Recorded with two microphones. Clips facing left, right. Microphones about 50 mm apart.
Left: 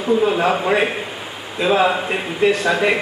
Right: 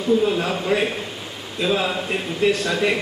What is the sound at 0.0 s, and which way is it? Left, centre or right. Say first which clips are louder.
A man's voice: left 3 dB; centre.